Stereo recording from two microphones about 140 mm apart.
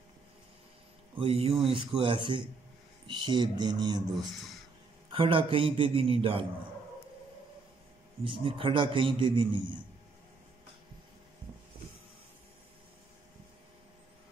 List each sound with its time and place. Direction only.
1.1 s a man's voice: 40° right (ahead or behind)
8.2 s a man's voice: 35° right (ahead or behind)